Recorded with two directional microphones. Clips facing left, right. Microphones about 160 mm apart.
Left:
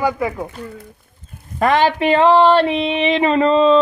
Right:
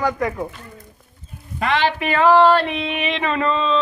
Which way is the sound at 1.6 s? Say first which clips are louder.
Left 5 dB; 45° left (ahead or behind).